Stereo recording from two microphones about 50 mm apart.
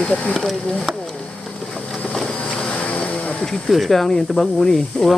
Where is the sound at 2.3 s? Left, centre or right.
Left.